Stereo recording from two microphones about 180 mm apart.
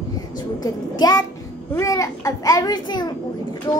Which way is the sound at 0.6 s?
20° left (ahead or behind).